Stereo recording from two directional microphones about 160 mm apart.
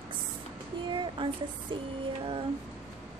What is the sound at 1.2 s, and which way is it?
Speech, 30° right (ahead or behind).